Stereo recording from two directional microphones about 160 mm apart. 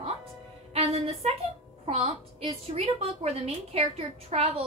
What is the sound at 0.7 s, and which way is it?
Music, 40° right (ahead or behind).